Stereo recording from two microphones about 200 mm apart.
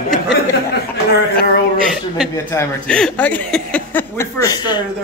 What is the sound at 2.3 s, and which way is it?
Speech, 15° left (ahead or behind).